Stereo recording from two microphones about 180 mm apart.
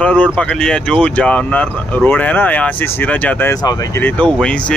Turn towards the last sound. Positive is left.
turn(degrees=5)  # may be behind; listen again after turning